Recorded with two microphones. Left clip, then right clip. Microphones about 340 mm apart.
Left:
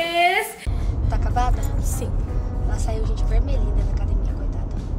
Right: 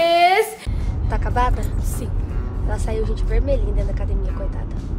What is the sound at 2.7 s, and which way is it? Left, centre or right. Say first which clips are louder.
Speech: right 6 dB; right.